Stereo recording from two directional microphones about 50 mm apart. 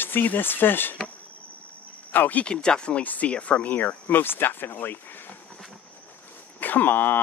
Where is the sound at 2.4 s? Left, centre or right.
Centre; by 5.4 s left.